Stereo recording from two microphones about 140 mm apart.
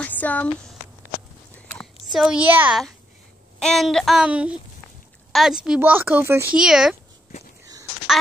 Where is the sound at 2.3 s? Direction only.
10° right (ahead or behind).